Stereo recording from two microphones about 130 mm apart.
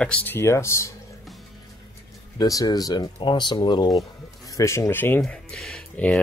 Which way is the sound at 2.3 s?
25° left (ahead or behind).